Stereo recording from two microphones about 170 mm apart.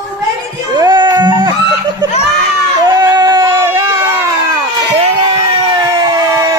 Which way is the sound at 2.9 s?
25° right (ahead or behind).